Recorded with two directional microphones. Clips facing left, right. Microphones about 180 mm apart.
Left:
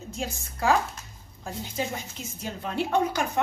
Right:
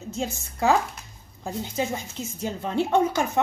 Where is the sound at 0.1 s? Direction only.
25° right (ahead or behind).